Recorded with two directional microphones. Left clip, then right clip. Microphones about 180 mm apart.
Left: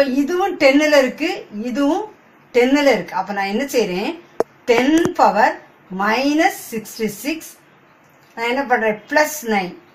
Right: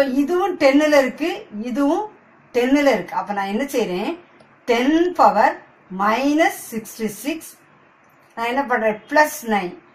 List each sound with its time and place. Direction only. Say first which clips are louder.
0.0 s a woman's voice: left 1 dB; 10° left (ahead or behind)
8.4 s a woman's voice: left 2 dB; 10° left (ahead or behind)